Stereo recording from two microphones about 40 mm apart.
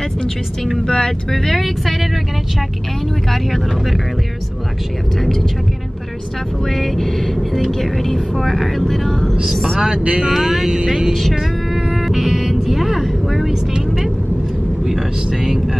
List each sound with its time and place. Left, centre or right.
0.8 s speech: centre
6.7 s speech: centre
9.8 s speech: right
10.3 s speech: centre
11.1 s vehicle: centre
13.5 s vehicle: centre
14.9 s speech: centre